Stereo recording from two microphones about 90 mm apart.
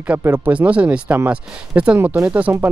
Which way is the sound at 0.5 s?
15° right (ahead or behind).